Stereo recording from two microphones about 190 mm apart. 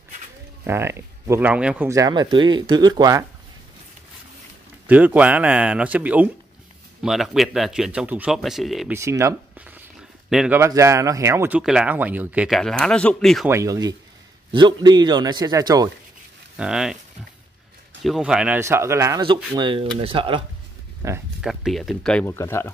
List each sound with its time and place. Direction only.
0.7 s speech: 15° right (ahead or behind)
1.9 s a man's voice: 20° right (ahead or behind)
4.8 s speech: 10° right (ahead or behind)
8.9 s speech: 15° right (ahead or behind)
10.6 s speech: 15° right (ahead or behind); by 13.5 s centre (ahead or behind)
13.5 s a man's voice: 15° right (ahead or behind)
16.5 s speech: 5° right (ahead or behind)
18.0 s a man's voice: centre (ahead or behind); by 20.4 s 25° right (ahead or behind)
21.0 s speech: 15° right (ahead or behind)
21.4 s speech: centre (ahead or behind)